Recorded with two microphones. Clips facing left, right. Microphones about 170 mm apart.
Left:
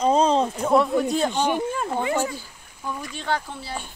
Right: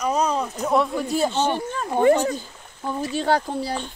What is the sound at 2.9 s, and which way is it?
Speech, 30° right (ahead or behind).